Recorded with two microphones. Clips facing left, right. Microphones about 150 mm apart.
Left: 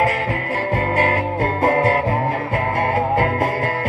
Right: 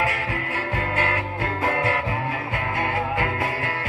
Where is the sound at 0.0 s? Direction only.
45° left (ahead or behind).